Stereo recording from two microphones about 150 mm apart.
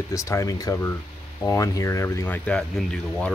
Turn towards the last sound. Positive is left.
turn(degrees=5)  # may be behind; listen again after turning